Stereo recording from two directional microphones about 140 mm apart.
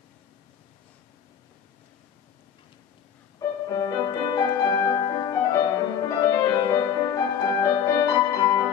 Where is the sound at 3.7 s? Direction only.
25° left (ahead or behind).